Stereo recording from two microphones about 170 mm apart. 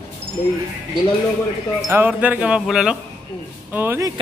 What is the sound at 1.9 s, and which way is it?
Music, 10° right (ahead or behind).